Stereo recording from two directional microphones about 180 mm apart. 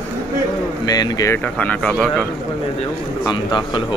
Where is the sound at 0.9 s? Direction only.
20° left (ahead or behind); by 2.3 s centre (ahead or behind).